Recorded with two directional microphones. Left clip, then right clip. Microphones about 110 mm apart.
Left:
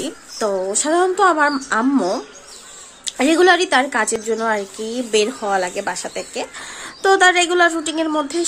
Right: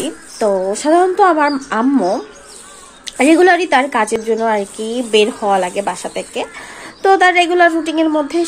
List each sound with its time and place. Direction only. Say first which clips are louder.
0.0 s a woman's voice: right 5 dB; 10° left (ahead or behind)